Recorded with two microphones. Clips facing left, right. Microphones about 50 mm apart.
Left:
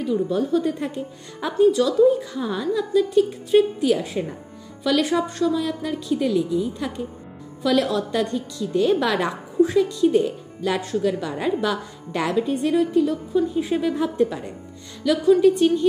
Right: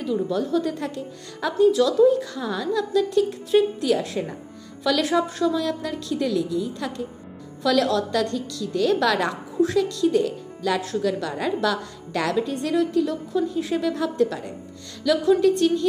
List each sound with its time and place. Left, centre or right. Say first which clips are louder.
0.0 s a woman's voice: left 2 dB; centre
1.7 s a woman's voice: even; centre
8.2 s a woman's voice: left 1 dB; left